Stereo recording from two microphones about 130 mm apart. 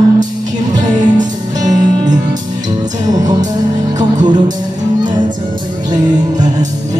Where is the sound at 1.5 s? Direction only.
30° right (ahead or behind).